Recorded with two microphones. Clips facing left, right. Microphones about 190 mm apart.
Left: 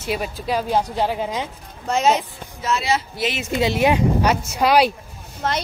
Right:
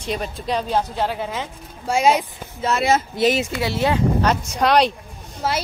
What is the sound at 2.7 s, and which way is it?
Speech, 50° right (ahead or behind).